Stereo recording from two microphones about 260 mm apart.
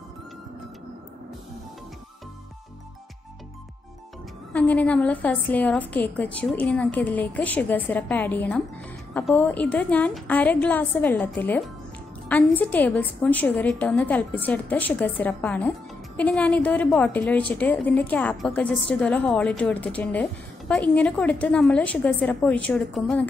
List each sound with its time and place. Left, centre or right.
4.5 s a woman's voice: centre